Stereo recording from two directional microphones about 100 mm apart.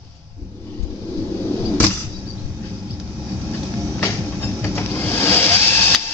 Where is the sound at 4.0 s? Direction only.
25° left (ahead or behind).